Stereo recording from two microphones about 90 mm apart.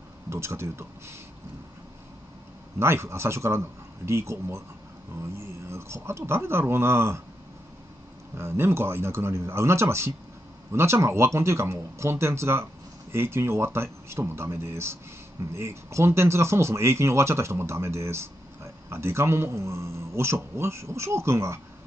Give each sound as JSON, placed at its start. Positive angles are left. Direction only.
{"t": 0.3, "sound": "speech", "side_deg": -30}
{"t": 2.8, "sound": "speech", "side_deg": -30}
{"t": 8.4, "sound": "speech", "side_deg": -30}